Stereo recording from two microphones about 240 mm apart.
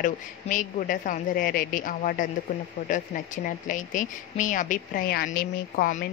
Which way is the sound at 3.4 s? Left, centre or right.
Left.